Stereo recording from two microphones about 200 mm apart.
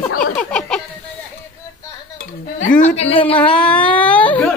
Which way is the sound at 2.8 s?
30° left (ahead or behind).